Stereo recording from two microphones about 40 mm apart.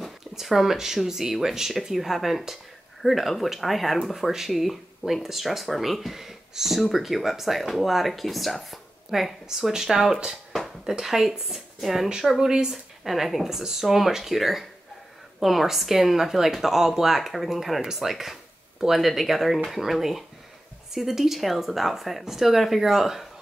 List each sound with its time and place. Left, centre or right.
0.0 s speech: centre
10.5 s a sound: centre
11.0 s speech: centre
13.0 s speech: centre